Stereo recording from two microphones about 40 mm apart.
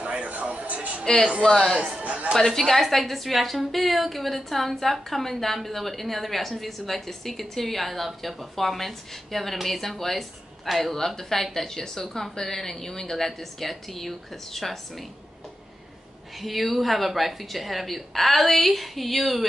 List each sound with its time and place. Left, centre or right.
0.0 s a sound: right
1.4 s speech: centre
1.9 s a man's voice: right
2.5 s a woman's voice: centre
16.3 s a woman's voice: centre